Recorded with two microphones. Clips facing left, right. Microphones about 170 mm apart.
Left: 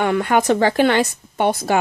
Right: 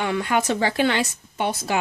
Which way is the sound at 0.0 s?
55° left (ahead or behind).